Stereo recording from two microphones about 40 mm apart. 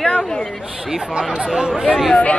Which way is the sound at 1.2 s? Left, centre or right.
Right.